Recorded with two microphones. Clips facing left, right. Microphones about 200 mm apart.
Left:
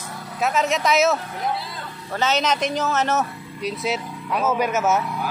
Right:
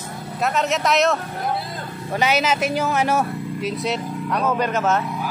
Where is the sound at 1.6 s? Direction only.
50° right (ahead or behind).